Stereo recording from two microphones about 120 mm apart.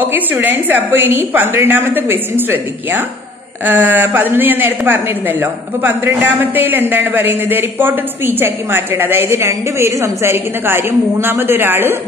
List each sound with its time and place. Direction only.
0.1 s speech: 15° right (ahead or behind)